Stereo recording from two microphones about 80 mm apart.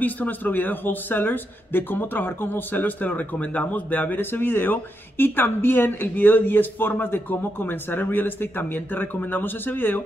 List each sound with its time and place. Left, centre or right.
0.0 s speech: left